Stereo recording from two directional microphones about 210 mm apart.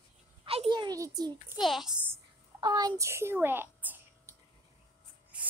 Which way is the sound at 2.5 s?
20° right (ahead or behind).